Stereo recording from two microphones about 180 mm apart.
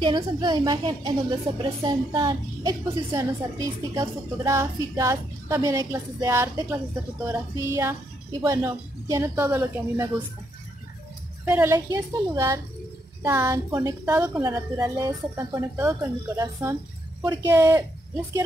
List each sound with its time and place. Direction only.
0.0 s a woman's voice: 25° right (ahead or behind)
11.4 s a woman's voice: 10° right (ahead or behind)